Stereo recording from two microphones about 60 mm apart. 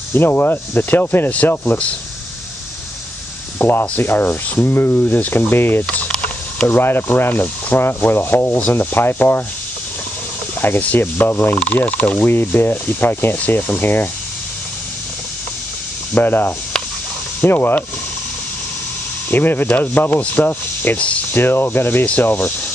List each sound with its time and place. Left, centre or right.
0.1 s rub: left
3.5 s speech: left
4.0 s rub: left
5.9 s a sound: centre
6.7 s rub: left
10.6 s rub: left
11.6 s speech: left
12.3 s rub: left
16.2 s rub: left
19.3 s rub: left
21.3 s rub: left